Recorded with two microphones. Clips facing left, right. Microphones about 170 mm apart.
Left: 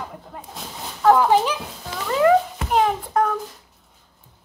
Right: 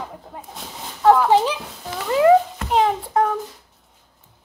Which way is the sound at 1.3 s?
25° right (ahead or behind).